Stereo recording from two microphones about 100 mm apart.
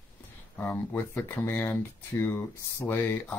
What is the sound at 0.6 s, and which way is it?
Speech, 20° left (ahead or behind).